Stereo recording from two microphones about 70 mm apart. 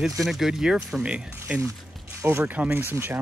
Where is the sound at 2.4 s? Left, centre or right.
Right.